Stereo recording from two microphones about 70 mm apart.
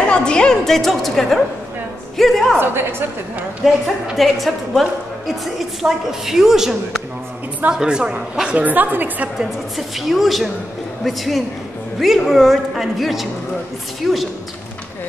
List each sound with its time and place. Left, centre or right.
0.0 s a woman's voice: centre
2.6 s a woman's voice: right
3.6 s a woman's voice: centre; by 9.3 s right
9.4 s a woman's voice: centre